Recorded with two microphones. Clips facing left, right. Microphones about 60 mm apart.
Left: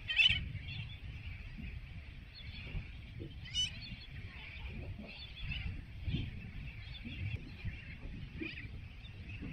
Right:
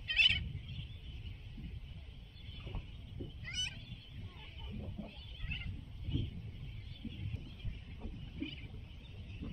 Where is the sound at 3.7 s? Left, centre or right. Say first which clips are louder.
Left 2 dB; left.